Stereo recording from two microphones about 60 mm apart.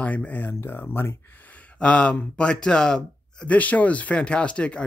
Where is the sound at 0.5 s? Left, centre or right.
Left.